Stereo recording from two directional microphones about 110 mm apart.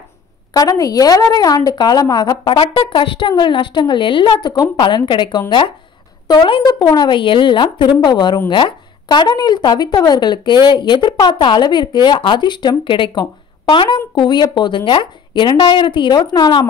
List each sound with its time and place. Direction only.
0.5 s a woman's voice: 35° left (ahead or behind)
2.4 s a woman's voice: 50° left (ahead or behind)